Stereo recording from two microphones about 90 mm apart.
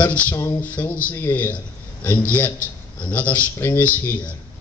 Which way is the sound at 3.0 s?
20° left (ahead or behind).